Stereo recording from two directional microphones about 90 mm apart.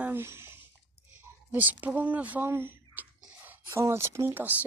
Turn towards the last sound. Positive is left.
turn(degrees=-30)  # may be behind; listen again after turning